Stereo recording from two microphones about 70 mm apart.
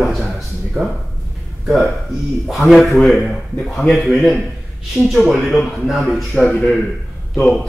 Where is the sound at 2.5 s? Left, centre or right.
Centre.